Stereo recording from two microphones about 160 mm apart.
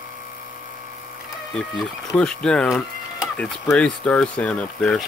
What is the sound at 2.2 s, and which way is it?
Speech, 5° left (ahead or behind).